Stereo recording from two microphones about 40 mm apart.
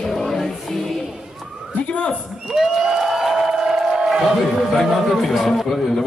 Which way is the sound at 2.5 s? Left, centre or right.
Centre.